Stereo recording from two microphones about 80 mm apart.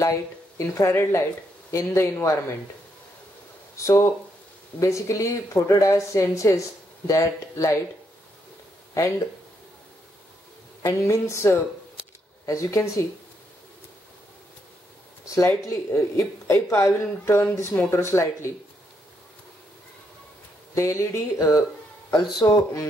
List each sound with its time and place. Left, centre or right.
0.0 s speech: left
3.7 s speech: left
8.9 s speech: left
10.8 s speech: left
15.2 s speech: left
20.7 s speech: left
22.1 s speech: left